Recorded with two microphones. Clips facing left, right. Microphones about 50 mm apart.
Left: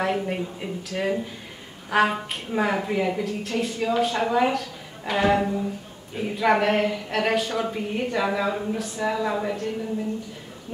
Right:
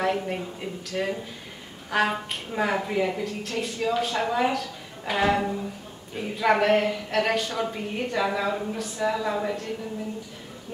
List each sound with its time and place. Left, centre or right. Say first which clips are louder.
0.0 s a woman's voice: left 1 dB; centre